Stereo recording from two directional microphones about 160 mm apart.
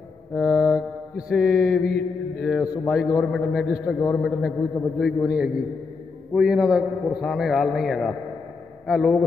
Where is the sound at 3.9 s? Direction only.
15° left (ahead or behind).